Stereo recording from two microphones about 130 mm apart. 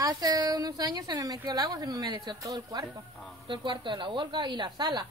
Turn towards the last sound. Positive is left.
turn(degrees=-35)  # may be behind; listen again after turning